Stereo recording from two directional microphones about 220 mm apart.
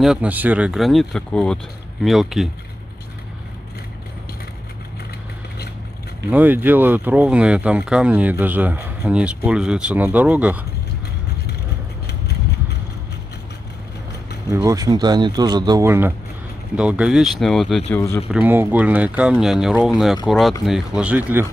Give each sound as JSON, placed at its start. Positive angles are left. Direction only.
{"t": 0.0, "sound": "speech", "side_deg": -5}
{"t": 6.3, "sound": "speech", "side_deg": -10}
{"t": 14.5, "sound": "speech", "side_deg": -15}
{"t": 18.3, "sound": "speech", "side_deg": -10}